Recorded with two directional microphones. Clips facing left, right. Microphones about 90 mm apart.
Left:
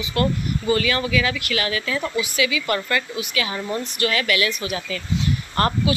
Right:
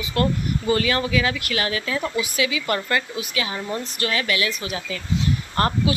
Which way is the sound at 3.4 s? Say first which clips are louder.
Left 2 dB; 20° right (ahead or behind).